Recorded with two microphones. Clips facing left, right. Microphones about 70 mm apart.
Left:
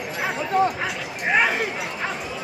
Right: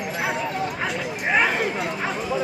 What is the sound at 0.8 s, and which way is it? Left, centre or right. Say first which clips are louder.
Chatter: right 1 dB; centre.